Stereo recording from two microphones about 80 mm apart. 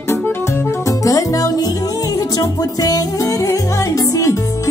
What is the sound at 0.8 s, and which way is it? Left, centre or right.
Music, left.